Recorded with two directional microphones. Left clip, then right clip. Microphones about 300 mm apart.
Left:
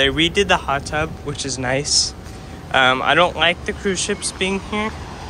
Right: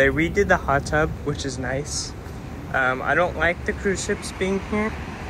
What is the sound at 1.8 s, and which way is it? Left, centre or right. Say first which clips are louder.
Speech: left 12 dB; centre.